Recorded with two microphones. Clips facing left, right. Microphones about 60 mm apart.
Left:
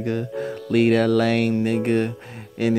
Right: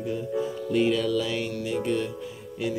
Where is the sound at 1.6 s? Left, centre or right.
Left.